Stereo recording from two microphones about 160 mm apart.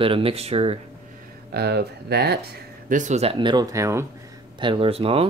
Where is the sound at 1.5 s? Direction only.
90° right.